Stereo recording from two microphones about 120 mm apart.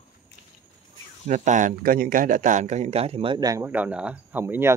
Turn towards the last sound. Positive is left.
turn(degrees=-20)  # may be behind; listen again after turning